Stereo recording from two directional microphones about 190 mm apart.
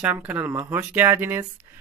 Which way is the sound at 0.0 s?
10° right (ahead or behind).